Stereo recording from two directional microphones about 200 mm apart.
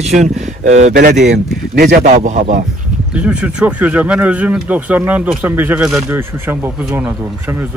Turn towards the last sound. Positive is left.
turn(degrees=-10)  # may be behind; listen again after turning